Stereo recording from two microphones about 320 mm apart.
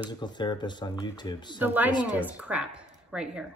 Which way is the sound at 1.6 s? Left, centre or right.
Centre.